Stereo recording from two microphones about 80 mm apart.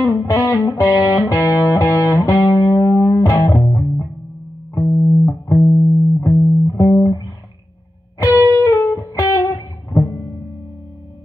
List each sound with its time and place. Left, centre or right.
0.3 s music: left
4.8 s music: left
5.2 s music: left
5.7 s music: centre
6.2 s music: left
7.1 s music: left
8.2 s music: left